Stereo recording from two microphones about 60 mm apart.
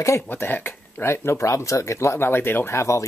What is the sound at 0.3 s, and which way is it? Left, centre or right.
Speech, left.